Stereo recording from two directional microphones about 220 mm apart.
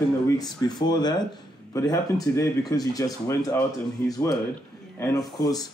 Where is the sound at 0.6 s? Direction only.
20° left (ahead or behind).